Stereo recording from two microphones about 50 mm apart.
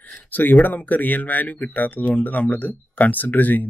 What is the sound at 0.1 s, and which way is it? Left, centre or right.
Speech, left.